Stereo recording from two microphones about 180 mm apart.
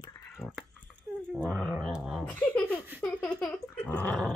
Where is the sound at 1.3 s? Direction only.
5° right (ahead or behind).